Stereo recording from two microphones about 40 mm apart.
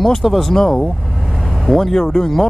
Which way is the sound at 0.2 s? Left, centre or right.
Centre.